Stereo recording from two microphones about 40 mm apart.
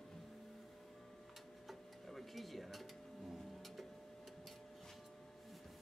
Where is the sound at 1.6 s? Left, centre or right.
Centre.